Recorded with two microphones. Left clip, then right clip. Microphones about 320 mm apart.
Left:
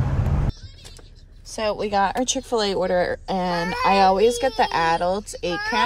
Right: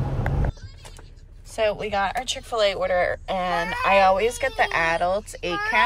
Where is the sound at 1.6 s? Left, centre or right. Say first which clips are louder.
Left 1 dB; centre.